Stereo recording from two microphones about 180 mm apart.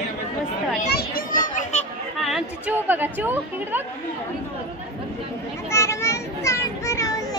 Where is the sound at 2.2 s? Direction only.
5° right (ahead or behind).